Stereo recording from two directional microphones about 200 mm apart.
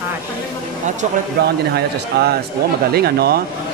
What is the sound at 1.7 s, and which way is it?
Speech, 55° right (ahead or behind).